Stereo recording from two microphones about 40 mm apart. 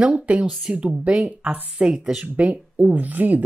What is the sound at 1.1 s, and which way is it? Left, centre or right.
Speech, right.